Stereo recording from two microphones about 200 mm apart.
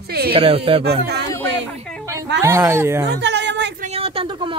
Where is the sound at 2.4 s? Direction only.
15° right (ahead or behind).